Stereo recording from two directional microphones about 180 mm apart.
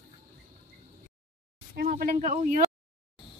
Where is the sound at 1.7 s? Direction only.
55° right (ahead or behind).